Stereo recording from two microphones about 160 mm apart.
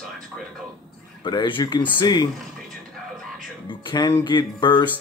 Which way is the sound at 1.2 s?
30° left (ahead or behind).